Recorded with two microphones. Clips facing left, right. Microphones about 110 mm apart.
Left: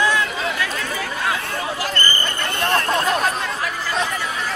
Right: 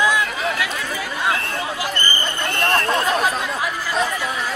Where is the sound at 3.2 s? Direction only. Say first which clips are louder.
Right 1 dB; 10° right (ahead or behind).